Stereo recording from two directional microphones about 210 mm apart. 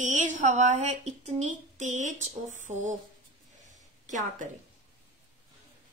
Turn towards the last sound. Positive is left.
turn(degrees=-35)  # may be behind; listen again after turning